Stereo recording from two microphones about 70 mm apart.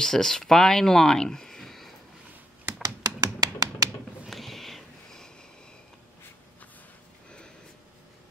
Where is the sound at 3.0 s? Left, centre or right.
Right.